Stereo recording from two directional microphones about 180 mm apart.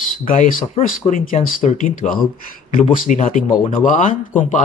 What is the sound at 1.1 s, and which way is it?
A man's voice, 40° left (ahead or behind).